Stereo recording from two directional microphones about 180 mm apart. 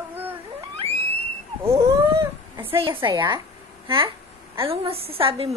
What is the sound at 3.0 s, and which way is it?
Speech, 25° right (ahead or behind).